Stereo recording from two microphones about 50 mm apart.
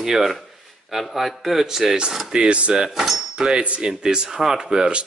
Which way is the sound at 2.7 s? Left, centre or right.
Centre.